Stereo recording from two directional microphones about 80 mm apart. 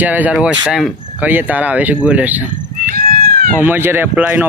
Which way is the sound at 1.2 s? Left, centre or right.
Right.